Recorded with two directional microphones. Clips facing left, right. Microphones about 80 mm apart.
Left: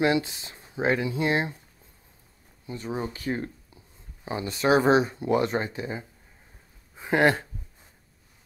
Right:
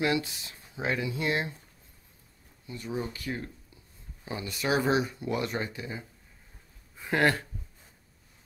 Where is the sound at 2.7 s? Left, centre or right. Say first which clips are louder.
Left 3 dB; left.